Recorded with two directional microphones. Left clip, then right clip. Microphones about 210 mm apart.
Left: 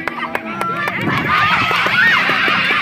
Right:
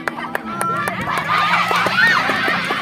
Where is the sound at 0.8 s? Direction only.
35° left (ahead or behind).